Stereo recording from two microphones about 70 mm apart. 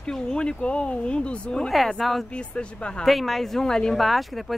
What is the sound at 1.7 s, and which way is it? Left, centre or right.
Speech, centre.